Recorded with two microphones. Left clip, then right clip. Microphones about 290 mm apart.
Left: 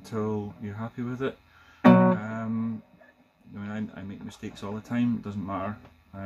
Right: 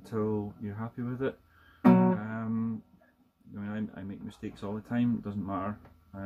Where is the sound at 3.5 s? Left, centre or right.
Centre.